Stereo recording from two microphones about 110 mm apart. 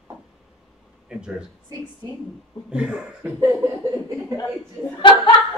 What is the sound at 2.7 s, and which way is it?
Speech, 5° right (ahead or behind).